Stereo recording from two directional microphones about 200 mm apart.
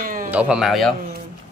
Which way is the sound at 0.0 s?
45° right (ahead or behind).